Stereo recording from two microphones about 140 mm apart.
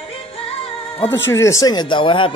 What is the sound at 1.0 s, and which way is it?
Speech, 15° left (ahead or behind).